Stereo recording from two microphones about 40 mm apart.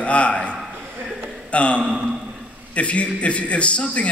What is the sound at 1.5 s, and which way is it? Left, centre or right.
A man's voice, left.